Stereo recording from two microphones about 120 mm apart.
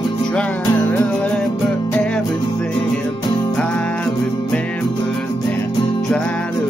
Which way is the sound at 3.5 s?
10° left (ahead or behind).